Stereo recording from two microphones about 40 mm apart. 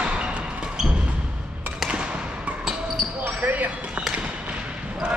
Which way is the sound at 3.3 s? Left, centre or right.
Right.